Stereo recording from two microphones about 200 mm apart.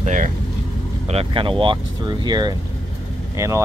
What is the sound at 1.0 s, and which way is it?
Speech, 30° right (ahead or behind).